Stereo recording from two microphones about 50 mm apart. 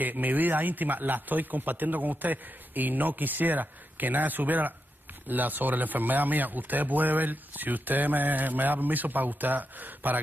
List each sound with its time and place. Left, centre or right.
0.0 s speech: right